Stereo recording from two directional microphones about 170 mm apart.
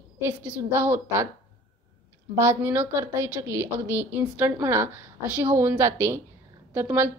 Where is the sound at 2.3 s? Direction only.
15° right (ahead or behind).